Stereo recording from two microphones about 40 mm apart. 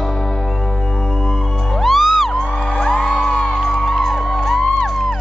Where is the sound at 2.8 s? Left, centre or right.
Centre.